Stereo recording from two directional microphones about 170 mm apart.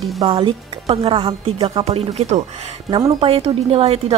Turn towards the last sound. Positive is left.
turn(degrees=-35)  # may be behind; listen again after turning